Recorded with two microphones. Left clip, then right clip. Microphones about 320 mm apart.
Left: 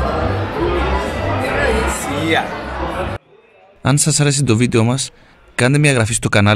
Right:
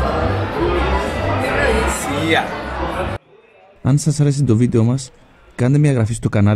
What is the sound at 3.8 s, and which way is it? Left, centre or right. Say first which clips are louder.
A man's voice: left 4 dB; left.